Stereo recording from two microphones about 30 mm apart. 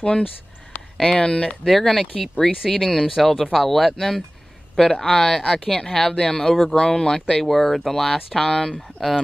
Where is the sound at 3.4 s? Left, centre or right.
Centre.